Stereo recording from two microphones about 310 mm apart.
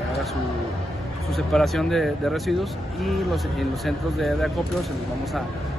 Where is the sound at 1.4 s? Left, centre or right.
Centre.